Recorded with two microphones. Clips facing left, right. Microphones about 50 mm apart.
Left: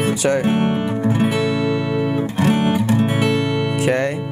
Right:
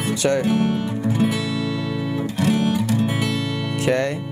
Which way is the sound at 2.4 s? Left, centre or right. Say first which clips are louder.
Left 2 dB; left.